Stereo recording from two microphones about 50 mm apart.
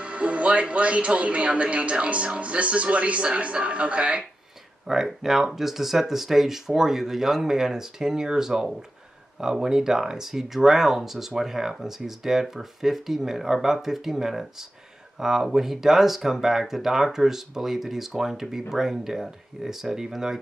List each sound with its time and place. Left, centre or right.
0.0 s speech: right
4.8 s speech: centre